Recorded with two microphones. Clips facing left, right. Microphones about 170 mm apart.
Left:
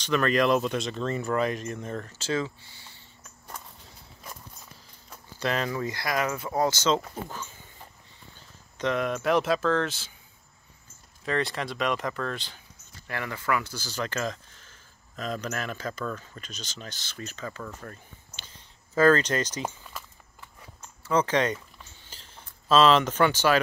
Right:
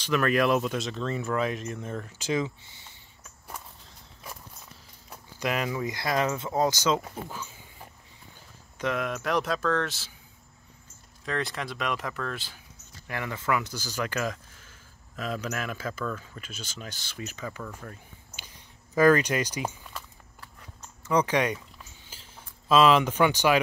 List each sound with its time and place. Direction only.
0.0 s speech: 5° right (ahead or behind)
2.1 s speech: 15° right (ahead or behind)
5.1 s speech: 10° right (ahead or behind)
8.7 s speech: 5° right (ahead or behind)
11.2 s speech: centre (ahead or behind)
17.8 s a sound: 10° right (ahead or behind)
21.0 s a sound: 15° right (ahead or behind)